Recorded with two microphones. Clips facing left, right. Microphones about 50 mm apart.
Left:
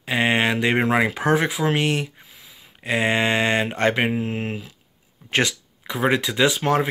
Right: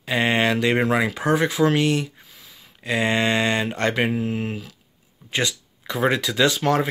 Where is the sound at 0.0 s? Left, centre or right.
Left.